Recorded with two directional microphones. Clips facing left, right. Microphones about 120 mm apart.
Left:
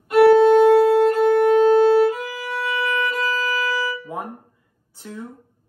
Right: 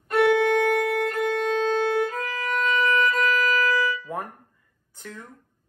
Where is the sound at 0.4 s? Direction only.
20° left (ahead or behind).